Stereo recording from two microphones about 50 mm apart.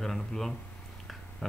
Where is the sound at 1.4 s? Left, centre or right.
Centre.